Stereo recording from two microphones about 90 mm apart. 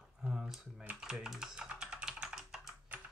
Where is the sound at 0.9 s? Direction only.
5° right (ahead or behind).